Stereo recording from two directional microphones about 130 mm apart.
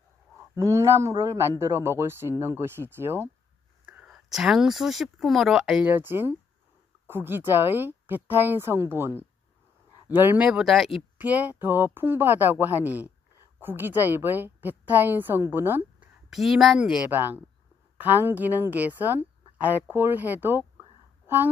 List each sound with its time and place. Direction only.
0.6 s speech: 20° right (ahead or behind)
3.8 s a woman's voice: 5° right (ahead or behind)
11.1 s a woman's voice: 10° right (ahead or behind)
16.3 s a woman's voice: centre (ahead or behind)